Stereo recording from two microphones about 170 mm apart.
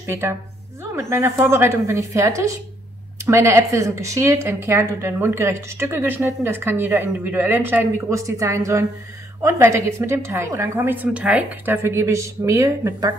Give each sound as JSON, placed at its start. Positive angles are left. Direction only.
{"t": 0.0, "sound": "a woman's voice", "side_deg": -15}